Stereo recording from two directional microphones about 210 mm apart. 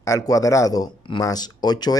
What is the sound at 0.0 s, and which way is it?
Speech, 15° left (ahead or behind).